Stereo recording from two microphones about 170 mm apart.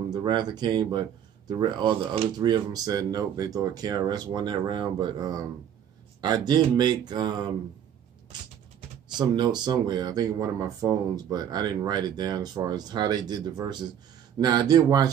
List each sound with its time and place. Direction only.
0.1 s speech: 25° right (ahead or behind)
9.1 s speech: 25° right (ahead or behind)